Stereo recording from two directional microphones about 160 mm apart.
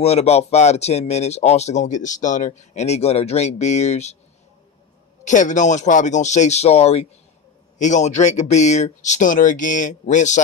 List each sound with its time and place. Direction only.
0.0 s speech: 40° left (ahead or behind)
5.2 s speech: 50° left (ahead or behind)